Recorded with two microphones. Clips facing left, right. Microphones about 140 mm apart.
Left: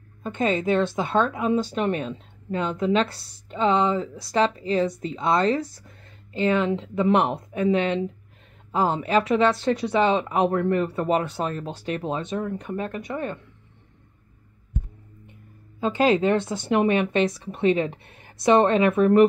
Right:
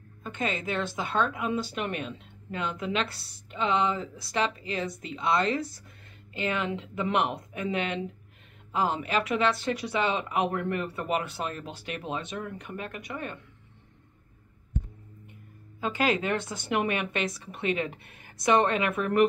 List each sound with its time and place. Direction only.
0.2 s a woman's voice: 30° left (ahead or behind)
15.8 s speech: 30° left (ahead or behind)